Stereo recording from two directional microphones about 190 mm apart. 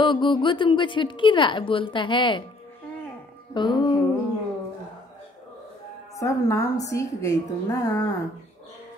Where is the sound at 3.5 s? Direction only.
25° left (ahead or behind).